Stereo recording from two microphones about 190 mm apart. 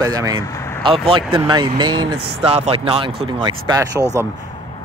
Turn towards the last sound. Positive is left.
turn(degrees=-20)  # may be behind; listen again after turning